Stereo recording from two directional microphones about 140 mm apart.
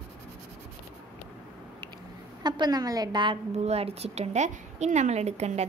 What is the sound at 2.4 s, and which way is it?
Speech, 30° right (ahead or behind).